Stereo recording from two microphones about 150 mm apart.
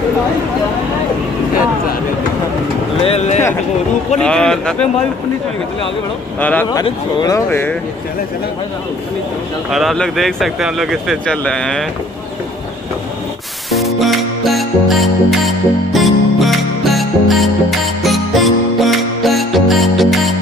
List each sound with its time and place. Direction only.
3.0 s speech: 45° left (ahead or behind)
4.2 s speech: 5° left (ahead or behind)
6.4 s speech: 10° left (ahead or behind)
6.7 s speech: 25° left (ahead or behind)
9.7 s speech: centre (ahead or behind)
13.7 s music: centre (ahead or behind)